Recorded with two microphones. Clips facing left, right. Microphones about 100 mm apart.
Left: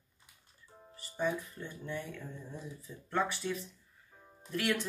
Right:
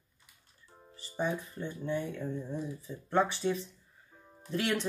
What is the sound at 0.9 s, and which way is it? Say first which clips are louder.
Speech: right 1 dB; 30° right (ahead or behind).